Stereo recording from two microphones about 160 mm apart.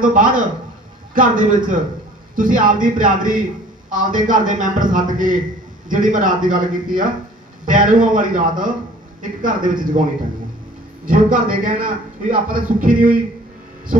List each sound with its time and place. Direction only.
0.0 s a man's voice: 55° right (ahead or behind)
11.1 s a man's voice: 60° right (ahead or behind)